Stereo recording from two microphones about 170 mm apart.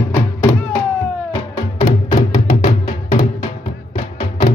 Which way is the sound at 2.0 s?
45° left (ahead or behind).